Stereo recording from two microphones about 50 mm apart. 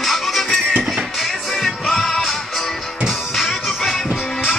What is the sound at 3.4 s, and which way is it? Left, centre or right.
Music, centre.